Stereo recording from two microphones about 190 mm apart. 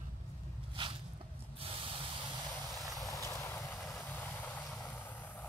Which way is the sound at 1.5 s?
30° right (ahead or behind).